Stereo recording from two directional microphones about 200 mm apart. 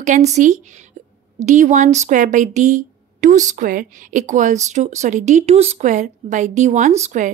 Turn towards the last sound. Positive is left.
turn(degrees=-35)  # may be behind; listen again after turning